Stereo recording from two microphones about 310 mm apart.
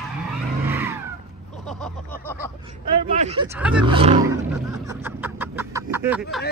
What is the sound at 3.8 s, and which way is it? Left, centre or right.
Roaring cats, centre.